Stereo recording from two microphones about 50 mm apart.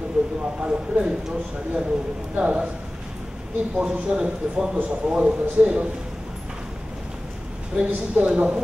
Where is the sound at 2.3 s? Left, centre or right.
Right.